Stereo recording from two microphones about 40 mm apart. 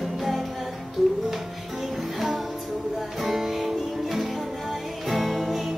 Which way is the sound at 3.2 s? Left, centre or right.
Centre.